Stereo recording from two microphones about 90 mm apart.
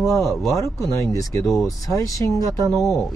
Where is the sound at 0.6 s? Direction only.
40° left (ahead or behind).